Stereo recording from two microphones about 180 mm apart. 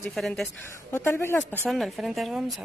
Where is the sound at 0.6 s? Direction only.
15° left (ahead or behind).